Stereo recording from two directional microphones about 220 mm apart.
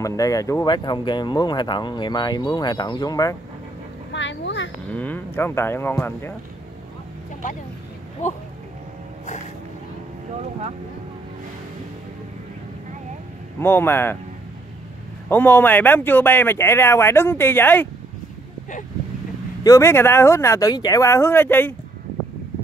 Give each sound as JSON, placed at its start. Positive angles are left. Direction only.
{"t": 0.0, "sound": "speech", "side_deg": 15}
{"t": 4.1, "sound": "a sound", "side_deg": 55}
{"t": 4.9, "sound": "speech", "side_deg": 5}
{"t": 8.2, "sound": "speech", "side_deg": 35}
{"t": 13.6, "sound": "speech", "side_deg": 10}
{"t": 15.2, "sound": "speech", "side_deg": 10}
{"t": 19.6, "sound": "speech", "side_deg": 15}